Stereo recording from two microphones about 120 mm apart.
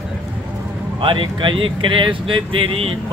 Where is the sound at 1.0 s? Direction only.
45° right (ahead or behind).